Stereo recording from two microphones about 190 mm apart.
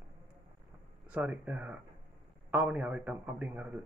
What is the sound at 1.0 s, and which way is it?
A man's voice, 5° right (ahead or behind).